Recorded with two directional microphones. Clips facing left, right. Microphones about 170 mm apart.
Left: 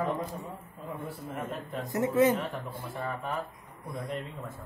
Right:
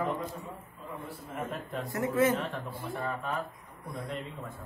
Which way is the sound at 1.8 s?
20° left (ahead or behind).